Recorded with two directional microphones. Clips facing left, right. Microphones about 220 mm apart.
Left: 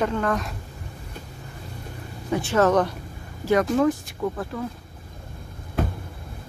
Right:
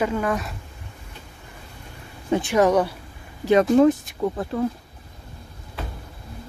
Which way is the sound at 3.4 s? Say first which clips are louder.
Right 4 dB; 25° right (ahead or behind).